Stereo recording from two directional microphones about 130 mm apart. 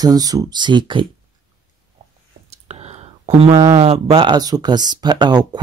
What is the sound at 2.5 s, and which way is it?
Whispering, 55° right (ahead or behind).